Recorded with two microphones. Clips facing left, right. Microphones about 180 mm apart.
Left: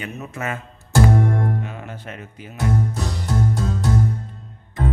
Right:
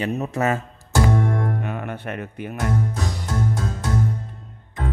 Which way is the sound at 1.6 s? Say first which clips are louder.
Right 5 dB; 60° right (ahead or behind).